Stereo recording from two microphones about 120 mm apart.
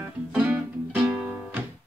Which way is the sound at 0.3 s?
10° right (ahead or behind).